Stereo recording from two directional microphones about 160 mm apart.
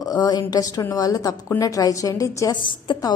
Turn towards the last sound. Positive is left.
turn(degrees=30)  # may be behind; listen again after turning